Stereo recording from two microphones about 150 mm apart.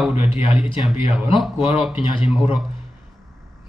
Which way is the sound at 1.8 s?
5° right (ahead or behind).